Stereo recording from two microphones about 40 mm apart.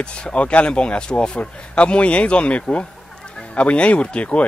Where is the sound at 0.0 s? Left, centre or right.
Left.